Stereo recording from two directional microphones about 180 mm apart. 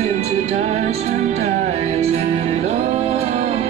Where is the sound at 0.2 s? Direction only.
35° right (ahead or behind).